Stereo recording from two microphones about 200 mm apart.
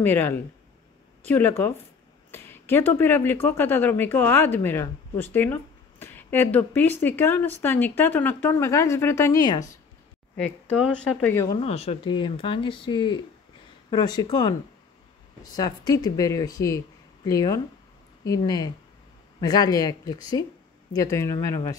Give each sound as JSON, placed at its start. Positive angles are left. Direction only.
{"t": 0.0, "sound": "speech", "side_deg": 10}
{"t": 10.3, "sound": "speech", "side_deg": 5}
{"t": 11.5, "sound": "speech", "side_deg": 30}